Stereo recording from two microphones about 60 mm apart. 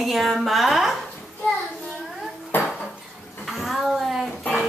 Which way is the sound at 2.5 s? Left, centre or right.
Left.